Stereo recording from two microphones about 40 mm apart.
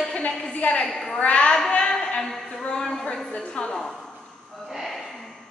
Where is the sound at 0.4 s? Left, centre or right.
Left.